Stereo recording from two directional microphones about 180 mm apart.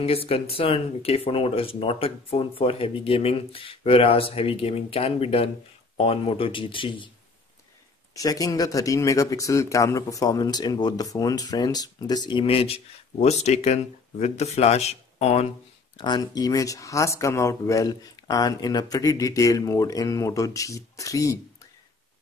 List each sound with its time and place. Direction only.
0.0 s speech: 30° left (ahead or behind)
8.1 s speech: 20° left (ahead or behind); by 15.5 s 35° left (ahead or behind)
16.0 s speech: 25° left (ahead or behind)